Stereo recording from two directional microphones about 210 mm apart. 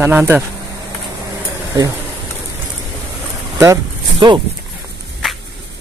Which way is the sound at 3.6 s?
20° right (ahead or behind).